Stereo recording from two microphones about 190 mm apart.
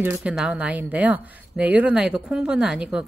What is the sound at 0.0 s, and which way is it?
Speech, 10° right (ahead or behind).